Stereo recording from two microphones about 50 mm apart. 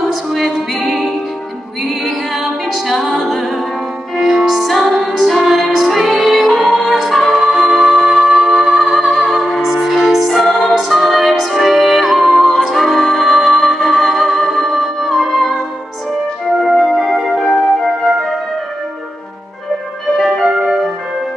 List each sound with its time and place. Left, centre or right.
0.1 s music: centre
2.0 s a capella: centre
4.2 s music: centre
16.6 s music: centre
20.2 s music: centre
20.4 s music: centre